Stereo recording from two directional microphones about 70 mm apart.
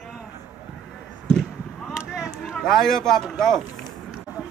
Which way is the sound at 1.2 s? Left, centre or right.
Centre.